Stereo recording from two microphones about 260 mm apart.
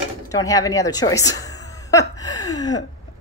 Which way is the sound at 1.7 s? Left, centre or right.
Centre.